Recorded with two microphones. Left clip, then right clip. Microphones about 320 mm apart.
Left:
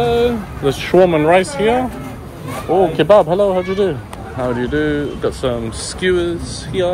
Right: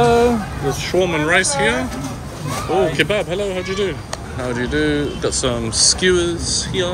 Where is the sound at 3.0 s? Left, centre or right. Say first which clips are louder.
Left 8 dB; centre.